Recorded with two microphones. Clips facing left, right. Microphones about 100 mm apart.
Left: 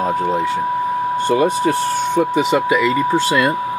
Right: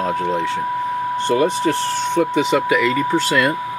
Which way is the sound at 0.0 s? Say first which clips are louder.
Left 2 dB; 10° left (ahead or behind).